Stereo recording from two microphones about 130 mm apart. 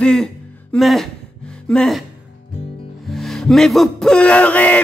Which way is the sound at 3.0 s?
Centre (ahead or behind).